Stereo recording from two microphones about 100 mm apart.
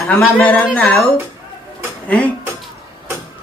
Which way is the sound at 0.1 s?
15° left (ahead or behind).